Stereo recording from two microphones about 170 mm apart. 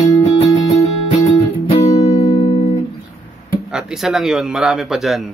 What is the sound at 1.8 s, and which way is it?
Music, 20° left (ahead or behind).